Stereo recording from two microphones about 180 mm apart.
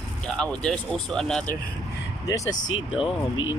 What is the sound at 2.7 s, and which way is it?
Speech, 30° left (ahead or behind).